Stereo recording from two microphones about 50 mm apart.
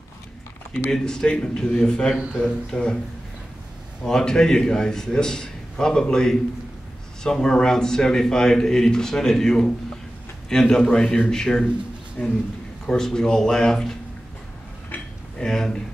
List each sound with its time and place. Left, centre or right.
0.9 s a man's voice: centre
2.1 s a man's voice: centre
2.4 s speech: left
4.0 s a man's voice: centre
15.3 s a sound: centre